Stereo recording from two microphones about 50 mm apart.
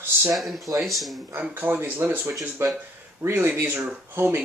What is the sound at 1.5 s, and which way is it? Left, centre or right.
Speech, right.